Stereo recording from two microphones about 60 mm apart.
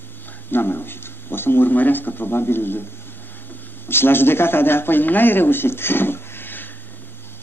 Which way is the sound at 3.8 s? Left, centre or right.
Left.